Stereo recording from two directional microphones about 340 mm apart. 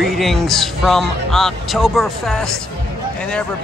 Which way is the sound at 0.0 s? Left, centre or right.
Centre.